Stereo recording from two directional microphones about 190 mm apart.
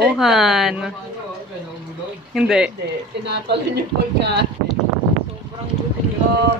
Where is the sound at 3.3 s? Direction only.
60° right (ahead or behind).